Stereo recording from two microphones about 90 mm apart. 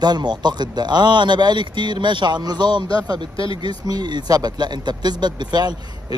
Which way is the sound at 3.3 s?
75° left (ahead or behind).